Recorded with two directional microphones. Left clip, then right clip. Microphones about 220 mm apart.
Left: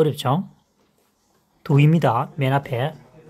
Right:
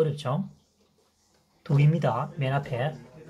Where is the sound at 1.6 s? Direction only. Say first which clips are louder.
Left 8 dB; 55° left (ahead or behind).